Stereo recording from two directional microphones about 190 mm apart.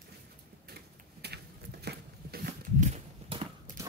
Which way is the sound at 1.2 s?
60° right (ahead or behind).